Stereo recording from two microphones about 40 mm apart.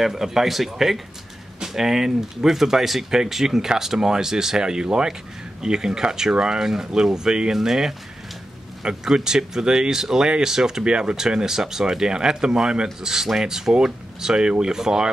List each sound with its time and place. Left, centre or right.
0.0 s speech: centre